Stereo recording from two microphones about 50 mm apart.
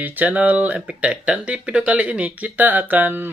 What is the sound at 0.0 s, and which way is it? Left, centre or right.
Speech, right.